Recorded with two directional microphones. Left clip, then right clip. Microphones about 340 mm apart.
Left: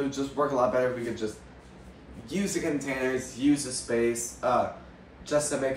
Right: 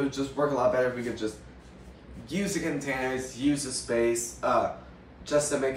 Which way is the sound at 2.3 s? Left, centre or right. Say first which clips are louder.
Left 1 dB; centre.